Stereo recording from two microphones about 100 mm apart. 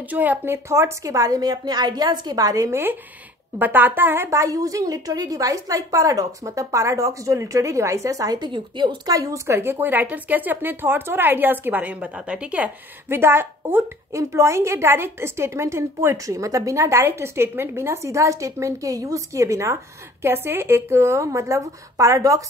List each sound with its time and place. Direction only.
0.1 s speech: 15° right (ahead or behind)
0.7 s a woman's voice: 30° right (ahead or behind)